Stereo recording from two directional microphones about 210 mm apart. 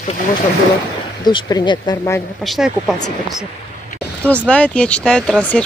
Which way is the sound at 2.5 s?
Centre (ahead or behind).